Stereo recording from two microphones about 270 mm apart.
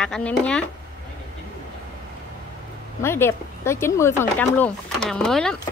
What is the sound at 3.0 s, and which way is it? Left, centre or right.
Speech, centre.